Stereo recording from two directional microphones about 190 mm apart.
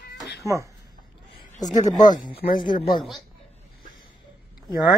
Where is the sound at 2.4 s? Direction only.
50° left (ahead or behind).